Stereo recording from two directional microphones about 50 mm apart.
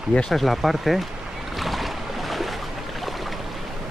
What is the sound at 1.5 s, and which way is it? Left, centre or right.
Boat, centre.